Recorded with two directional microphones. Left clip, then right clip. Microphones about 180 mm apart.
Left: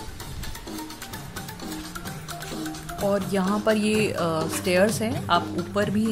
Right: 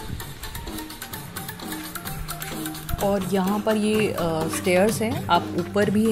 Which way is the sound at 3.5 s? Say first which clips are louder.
Left 1 dB; 15° left (ahead or behind).